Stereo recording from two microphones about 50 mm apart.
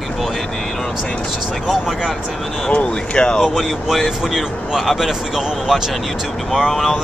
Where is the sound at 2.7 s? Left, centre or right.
Left.